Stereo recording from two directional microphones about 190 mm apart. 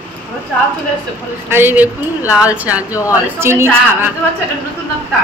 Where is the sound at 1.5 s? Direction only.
10° right (ahead or behind).